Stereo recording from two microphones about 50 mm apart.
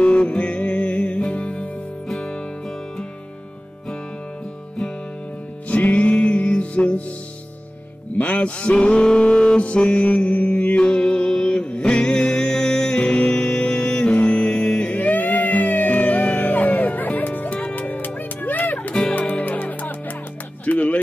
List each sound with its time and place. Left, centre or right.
0.0 s music: left
5.7 s music: left
8.2 s music: left
10.8 s music: centre
15.0 s music: left